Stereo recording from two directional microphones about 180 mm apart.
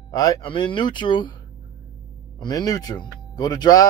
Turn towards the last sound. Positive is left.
turn(degrees=20)  # may be behind; listen again after turning